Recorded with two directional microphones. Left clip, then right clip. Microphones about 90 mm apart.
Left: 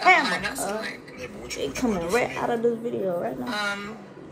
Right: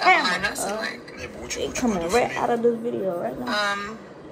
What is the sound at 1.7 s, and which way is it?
Speech, 45° right (ahead or behind).